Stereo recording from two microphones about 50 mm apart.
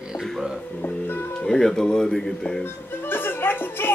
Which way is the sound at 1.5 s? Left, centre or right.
Centre.